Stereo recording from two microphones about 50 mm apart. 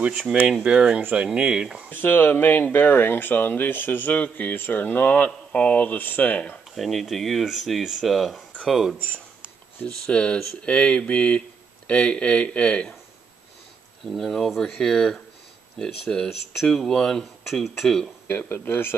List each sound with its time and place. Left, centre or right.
0.7 s speech: centre
1.9 s speech: left
4.1 s speech: left
5.5 s speech: left
6.7 s speech: centre
10.0 s speech: left
14.1 s speech: centre
18.3 s speech: left